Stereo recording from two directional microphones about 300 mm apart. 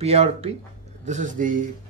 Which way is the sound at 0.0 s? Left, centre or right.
Centre.